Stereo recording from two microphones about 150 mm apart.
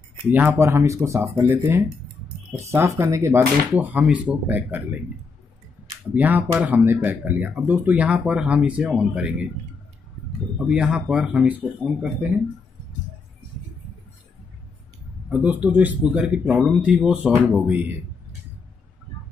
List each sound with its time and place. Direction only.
0.3 s speech: 15° right (ahead or behind)
10.7 s speech: 5° right (ahead or behind)
15.2 s speech: 10° right (ahead or behind)